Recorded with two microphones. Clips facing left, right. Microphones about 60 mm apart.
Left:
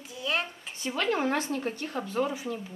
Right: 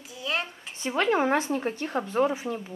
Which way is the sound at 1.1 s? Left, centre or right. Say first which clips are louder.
Right 4 dB; right.